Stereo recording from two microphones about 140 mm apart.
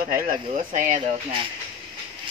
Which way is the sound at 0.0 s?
90° right.